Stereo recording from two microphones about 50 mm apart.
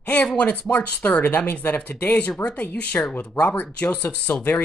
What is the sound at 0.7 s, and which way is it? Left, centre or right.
Speech, left.